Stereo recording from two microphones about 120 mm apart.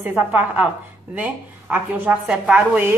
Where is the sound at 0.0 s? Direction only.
15° right (ahead or behind).